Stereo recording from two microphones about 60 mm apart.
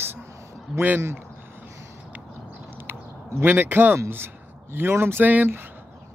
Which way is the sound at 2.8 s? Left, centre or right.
Right.